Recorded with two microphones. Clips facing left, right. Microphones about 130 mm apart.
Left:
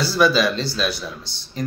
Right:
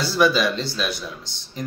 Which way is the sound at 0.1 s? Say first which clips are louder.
Left 1 dB; 15° right (ahead or behind).